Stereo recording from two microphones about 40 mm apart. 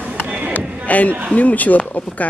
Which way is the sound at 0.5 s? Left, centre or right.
Left.